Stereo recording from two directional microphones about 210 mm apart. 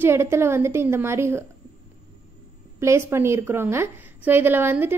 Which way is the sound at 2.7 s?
10° right (ahead or behind).